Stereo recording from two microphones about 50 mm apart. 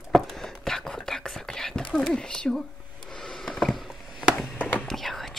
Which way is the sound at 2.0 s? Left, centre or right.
Centre.